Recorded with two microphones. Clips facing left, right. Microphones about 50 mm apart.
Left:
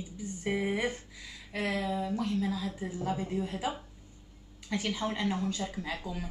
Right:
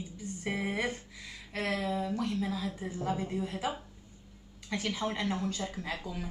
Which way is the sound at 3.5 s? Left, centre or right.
Centre.